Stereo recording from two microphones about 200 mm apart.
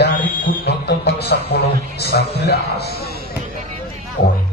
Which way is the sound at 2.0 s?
55° left (ahead or behind).